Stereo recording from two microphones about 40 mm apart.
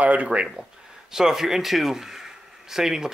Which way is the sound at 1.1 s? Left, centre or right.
Centre.